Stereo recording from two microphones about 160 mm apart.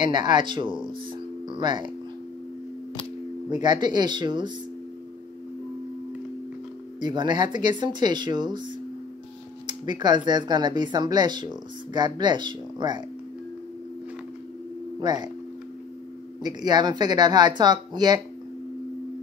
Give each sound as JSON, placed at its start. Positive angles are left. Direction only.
{"t": 0.1, "sound": "speech", "side_deg": -30}
{"t": 3.4, "sound": "speech", "side_deg": -25}
{"t": 7.0, "sound": "speech", "side_deg": -30}
{"t": 15.0, "sound": "speech", "side_deg": -25}
{"t": 16.4, "sound": "speech", "side_deg": -25}